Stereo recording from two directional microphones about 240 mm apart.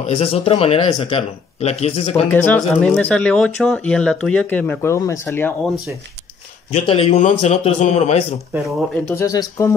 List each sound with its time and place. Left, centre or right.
0.0 s speech: left
2.3 s speech: centre
6.7 s speech: left
8.6 s speech: centre